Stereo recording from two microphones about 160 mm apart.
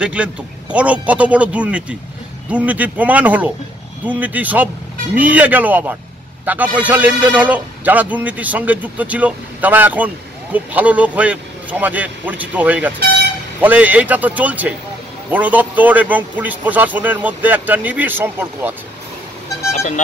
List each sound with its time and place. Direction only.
0.0 s a man's voice: 5° right (ahead or behind)
19.7 s speech: 45° left (ahead or behind)